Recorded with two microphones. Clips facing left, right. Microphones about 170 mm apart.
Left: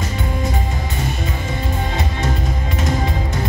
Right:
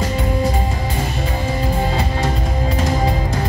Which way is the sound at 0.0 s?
30° right (ahead or behind).